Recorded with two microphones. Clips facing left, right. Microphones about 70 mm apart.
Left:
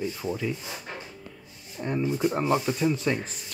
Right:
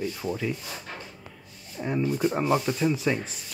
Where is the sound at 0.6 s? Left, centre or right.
Centre.